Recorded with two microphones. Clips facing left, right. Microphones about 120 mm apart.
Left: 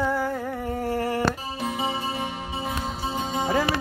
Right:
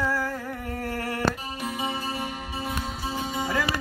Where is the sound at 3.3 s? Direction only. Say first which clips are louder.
Left 5 dB; 25° left (ahead or behind).